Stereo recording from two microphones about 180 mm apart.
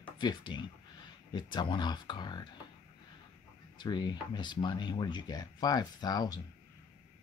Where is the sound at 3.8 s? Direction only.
25° left (ahead or behind).